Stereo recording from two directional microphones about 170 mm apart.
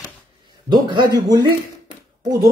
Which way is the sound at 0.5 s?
25° right (ahead or behind).